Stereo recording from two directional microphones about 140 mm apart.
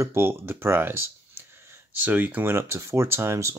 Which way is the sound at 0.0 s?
15° right (ahead or behind).